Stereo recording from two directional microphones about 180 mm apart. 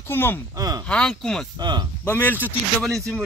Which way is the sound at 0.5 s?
20° right (ahead or behind).